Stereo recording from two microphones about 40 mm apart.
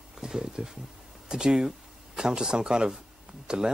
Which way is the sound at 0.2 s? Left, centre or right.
Centre.